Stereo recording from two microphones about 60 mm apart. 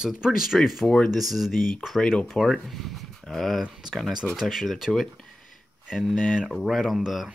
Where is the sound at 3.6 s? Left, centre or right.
Centre.